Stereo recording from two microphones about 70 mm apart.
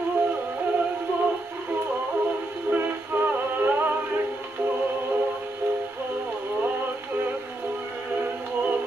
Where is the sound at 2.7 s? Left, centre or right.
Right.